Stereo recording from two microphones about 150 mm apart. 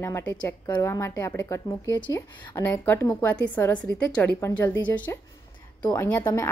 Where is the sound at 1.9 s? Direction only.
30° left (ahead or behind).